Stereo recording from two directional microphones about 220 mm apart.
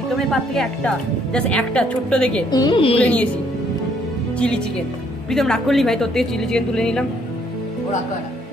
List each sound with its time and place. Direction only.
0.3 s a woman's voice: 5° left (ahead or behind)
2.5 s a woman's voice: 20° left (ahead or behind)
3.0 s speech: 5° left (ahead or behind)
4.4 s a woman's voice: 5° left (ahead or behind)